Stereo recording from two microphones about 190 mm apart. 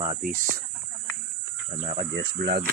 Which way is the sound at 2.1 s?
65° right (ahead or behind).